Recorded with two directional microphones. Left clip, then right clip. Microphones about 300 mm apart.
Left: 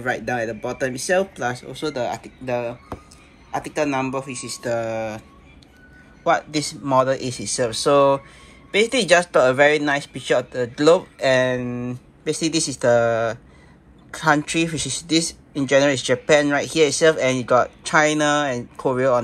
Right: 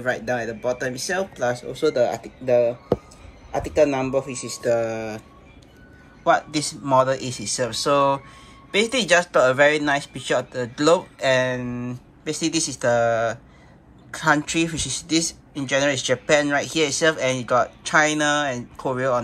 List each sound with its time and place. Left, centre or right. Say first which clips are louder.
0.0 s speech: left 1 dB; centre
1.7 s speech: right 6 dB; left
2.0 s speech: right 1 dB; centre
2.4 s speech: right 7 dB; left
3.5 s speech: right 3 dB; centre
6.2 s speech: even; centre